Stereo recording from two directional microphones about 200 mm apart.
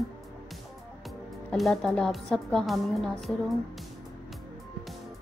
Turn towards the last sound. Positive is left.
turn(degrees=0)  # may be behind; listen again after turning